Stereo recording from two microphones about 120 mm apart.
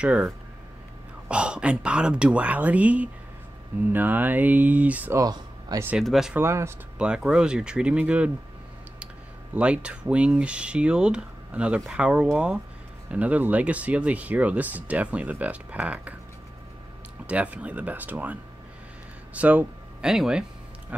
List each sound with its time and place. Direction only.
0.0 s speech: 10° right (ahead or behind)
1.3 s speech: 10° right (ahead or behind)
5.1 s speech: 25° right (ahead or behind)
6.0 s speech: 5° right (ahead or behind)
6.3 s speech: 20° right (ahead or behind)
7.0 s speech: 5° right (ahead or behind)
9.6 s speech: 10° right (ahead or behind)
17.3 s speech: 10° right (ahead or behind)